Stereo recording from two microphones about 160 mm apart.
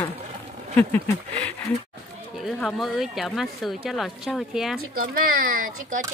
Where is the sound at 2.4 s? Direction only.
Centre (ahead or behind).